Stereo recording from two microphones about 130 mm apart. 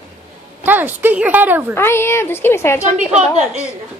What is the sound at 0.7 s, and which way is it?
A woman's voice, 15° right (ahead or behind).